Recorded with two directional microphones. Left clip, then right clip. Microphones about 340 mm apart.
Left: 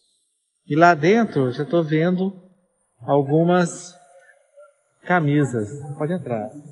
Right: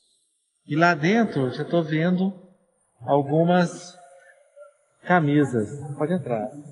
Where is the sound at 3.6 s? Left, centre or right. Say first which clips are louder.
Left 2 dB; centre.